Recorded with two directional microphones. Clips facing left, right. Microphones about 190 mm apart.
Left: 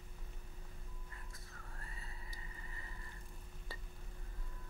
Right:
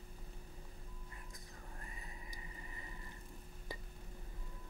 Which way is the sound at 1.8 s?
15° right (ahead or behind).